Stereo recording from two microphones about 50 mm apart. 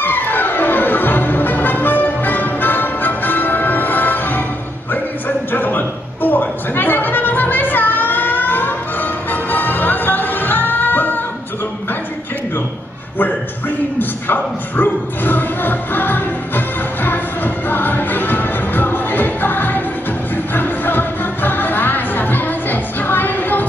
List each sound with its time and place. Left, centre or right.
0.0 s music: left
5.5 s a sound: left
13.9 s music: left